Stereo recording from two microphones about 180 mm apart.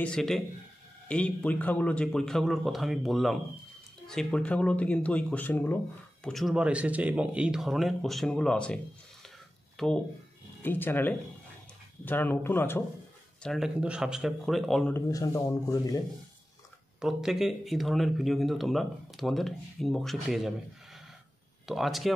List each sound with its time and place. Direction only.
0.0 s speech: 5° left (ahead or behind)
9.8 s speech: 5° left (ahead or behind)
13.4 s speech: centre (ahead or behind)
15.0 s speech: 20° left (ahead or behind)
17.0 s speech: centre (ahead or behind)